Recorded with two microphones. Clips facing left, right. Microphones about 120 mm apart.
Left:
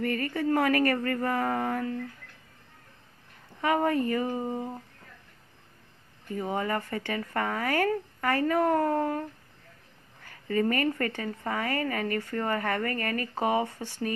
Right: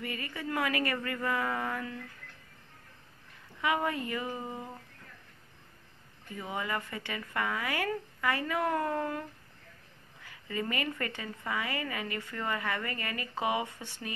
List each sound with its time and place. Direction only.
0.0 s speech: 50° left (ahead or behind)
3.6 s speech: 40° left (ahead or behind)
6.3 s speech: 40° left (ahead or behind)
10.2 s a woman's voice: 45° left (ahead or behind)